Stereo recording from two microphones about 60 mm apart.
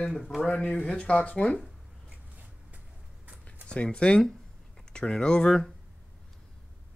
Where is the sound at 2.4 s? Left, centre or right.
Right.